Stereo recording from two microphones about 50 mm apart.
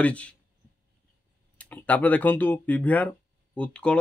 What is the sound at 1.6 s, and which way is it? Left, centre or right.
Speech, left.